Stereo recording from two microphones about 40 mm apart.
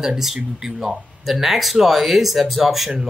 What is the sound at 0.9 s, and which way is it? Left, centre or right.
Speech, centre.